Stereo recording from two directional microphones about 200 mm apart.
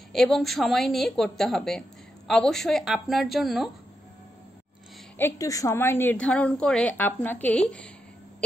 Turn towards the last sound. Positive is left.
turn(degrees=5)  # may be behind; listen again after turning